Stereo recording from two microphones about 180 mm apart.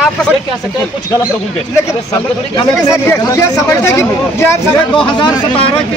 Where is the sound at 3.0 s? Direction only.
15° left (ahead or behind).